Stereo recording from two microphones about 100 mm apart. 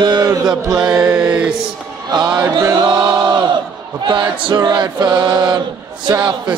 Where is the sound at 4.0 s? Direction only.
50° right (ahead or behind).